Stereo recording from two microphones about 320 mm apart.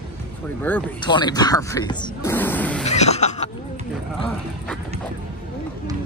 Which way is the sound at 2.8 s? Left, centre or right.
Centre.